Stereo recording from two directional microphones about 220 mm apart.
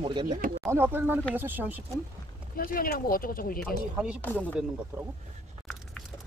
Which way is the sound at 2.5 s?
40° left (ahead or behind).